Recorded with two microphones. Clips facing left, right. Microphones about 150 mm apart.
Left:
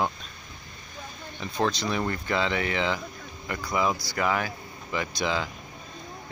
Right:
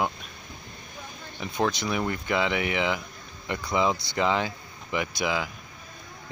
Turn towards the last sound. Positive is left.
turn(degrees=-10)  # may be behind; listen again after turning